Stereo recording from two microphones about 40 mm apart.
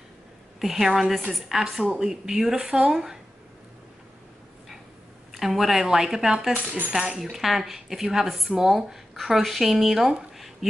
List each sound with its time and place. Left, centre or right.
0.6 s a woman's voice: centre
5.3 s a woman's voice: centre
7.3 s a woman's voice: centre
10.3 s a sound: centre